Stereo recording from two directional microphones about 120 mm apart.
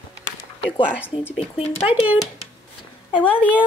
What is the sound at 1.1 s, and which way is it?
Speech, 45° left (ahead or behind).